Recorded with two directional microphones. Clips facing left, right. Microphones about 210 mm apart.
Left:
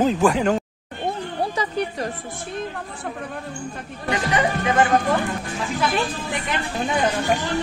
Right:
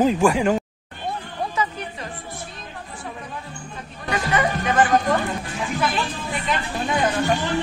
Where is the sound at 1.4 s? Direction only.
35° left (ahead or behind).